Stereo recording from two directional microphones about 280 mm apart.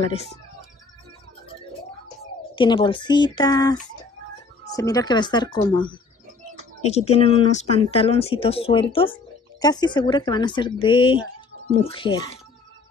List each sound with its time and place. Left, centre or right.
0.0 s speech: left
2.5 s speech: centre